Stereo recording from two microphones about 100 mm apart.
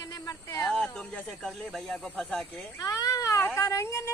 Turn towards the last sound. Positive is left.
turn(degrees=30)  # may be behind; listen again after turning